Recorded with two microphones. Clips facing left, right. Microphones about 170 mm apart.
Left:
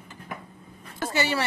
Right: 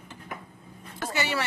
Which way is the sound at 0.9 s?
30° left (ahead or behind).